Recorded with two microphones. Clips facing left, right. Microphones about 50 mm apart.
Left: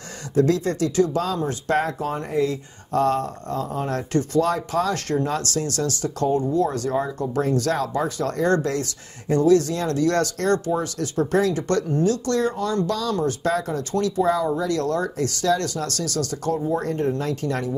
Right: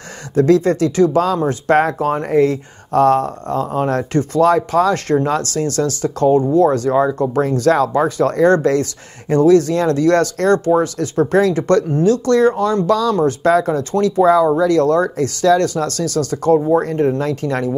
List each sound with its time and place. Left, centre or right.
0.4 s speech: right
14.2 s speech: right